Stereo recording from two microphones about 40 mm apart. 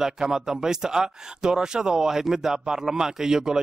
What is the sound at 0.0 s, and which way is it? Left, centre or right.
Speech, centre.